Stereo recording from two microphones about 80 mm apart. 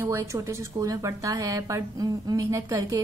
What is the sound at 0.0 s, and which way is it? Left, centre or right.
A woman's voice, right.